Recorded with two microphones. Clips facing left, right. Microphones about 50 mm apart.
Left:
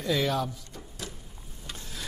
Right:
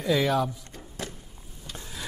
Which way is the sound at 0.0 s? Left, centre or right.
Centre.